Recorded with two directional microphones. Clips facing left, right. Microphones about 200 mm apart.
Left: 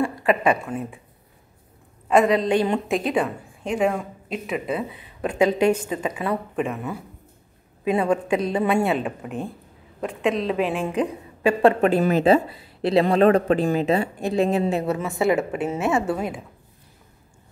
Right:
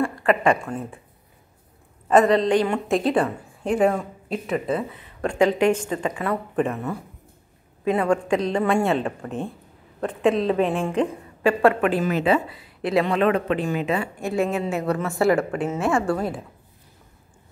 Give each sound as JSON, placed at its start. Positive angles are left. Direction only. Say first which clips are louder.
{"t": 0.0, "sound": "a sound", "louder": "even", "side_deg": 20}
{"t": 0.5, "sound": "speech", "louder": "even", "side_deg": 10}
{"t": 2.0, "sound": "a woman's voice", "louder": "right 1 dB", "side_deg": 5}
{"t": 2.5, "sound": "a woman's voice", "louder": "even", "side_deg": 20}
{"t": 2.9, "sound": "a woman's voice", "louder": "right 2 dB", "side_deg": 0}
{"t": 7.9, "sound": "a woman's voice", "louder": "even", "side_deg": 25}
{"t": 8.3, "sound": "speech", "louder": "even", "side_deg": 10}
{"t": 9.9, "sound": "a woman's voice", "louder": "right 3 dB", "side_deg": 0}
{"t": 11.4, "sound": "a woman's voice", "louder": "left 1 dB", "side_deg": 20}
{"t": 11.8, "sound": "a woman's voice", "louder": "left 3 dB", "side_deg": 35}
{"t": 15.0, "sound": "a woman's voice", "louder": "right 1 dB", "side_deg": 20}